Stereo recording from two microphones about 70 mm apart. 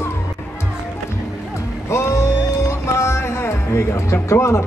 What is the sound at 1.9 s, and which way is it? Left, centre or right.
Music, left.